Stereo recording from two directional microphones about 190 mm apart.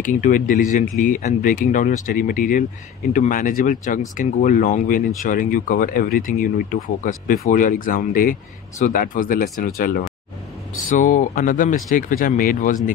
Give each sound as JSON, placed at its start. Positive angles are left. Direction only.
{"t": 0.0, "sound": "speech", "side_deg": 45}